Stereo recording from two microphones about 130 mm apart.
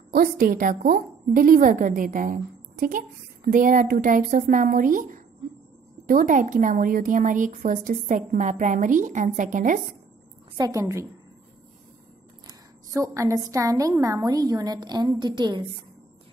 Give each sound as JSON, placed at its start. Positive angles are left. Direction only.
{"t": 0.4, "sound": "a woman's voice", "side_deg": -90}
{"t": 10.6, "sound": "a woman's voice", "side_deg": -25}
{"t": 12.4, "sound": "a woman's voice", "side_deg": -25}